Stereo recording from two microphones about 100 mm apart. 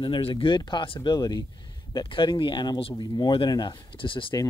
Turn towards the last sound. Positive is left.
turn(degrees=60)  # may be behind; listen again after turning